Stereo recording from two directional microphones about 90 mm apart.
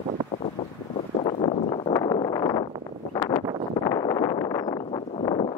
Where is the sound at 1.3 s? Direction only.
70° left (ahead or behind).